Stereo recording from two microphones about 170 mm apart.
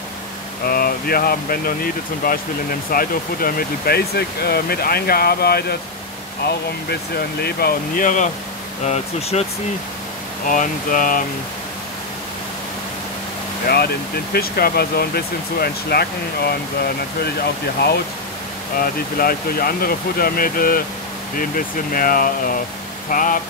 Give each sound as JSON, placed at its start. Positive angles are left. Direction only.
{"t": 0.7, "sound": "speech", "side_deg": 60}
{"t": 7.4, "sound": "speech", "side_deg": 60}
{"t": 10.5, "sound": "speech", "side_deg": 50}
{"t": 13.7, "sound": "speech", "side_deg": 65}
{"t": 18.8, "sound": "speech", "side_deg": 60}